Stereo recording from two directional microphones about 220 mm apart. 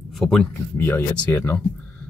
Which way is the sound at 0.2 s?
5° left (ahead or behind).